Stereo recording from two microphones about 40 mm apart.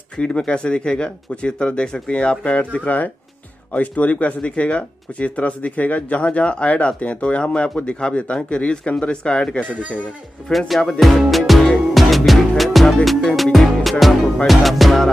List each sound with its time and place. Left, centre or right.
0.2 s speech: left
9.7 s a man's voice: right
10.5 s speech: centre
11.0 s music: centre